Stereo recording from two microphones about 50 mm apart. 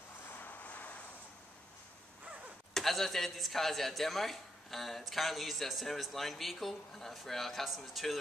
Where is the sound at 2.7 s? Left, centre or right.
Centre.